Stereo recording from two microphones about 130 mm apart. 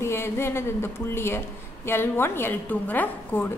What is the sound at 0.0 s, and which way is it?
A woman's voice, 20° left (ahead or behind).